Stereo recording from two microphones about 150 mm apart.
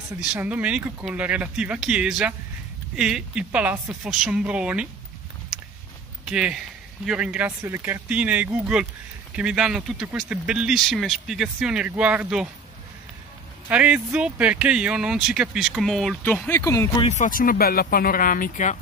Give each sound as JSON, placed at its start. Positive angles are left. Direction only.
{"t": 0.2, "sound": "speech", "side_deg": -10}
{"t": 6.2, "sound": "a man's voice", "side_deg": -5}
{"t": 13.7, "sound": "speech", "side_deg": -10}
{"t": 16.2, "sound": "speech", "side_deg": 10}
{"t": 17.0, "sound": "speech", "side_deg": 55}